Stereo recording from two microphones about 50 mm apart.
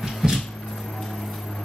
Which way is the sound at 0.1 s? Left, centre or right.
Centre.